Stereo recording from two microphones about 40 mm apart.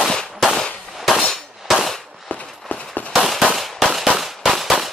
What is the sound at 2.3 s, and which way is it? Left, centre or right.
Clip-clop, left.